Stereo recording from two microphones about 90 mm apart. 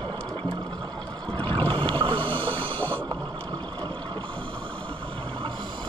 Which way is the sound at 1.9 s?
70° right (ahead or behind).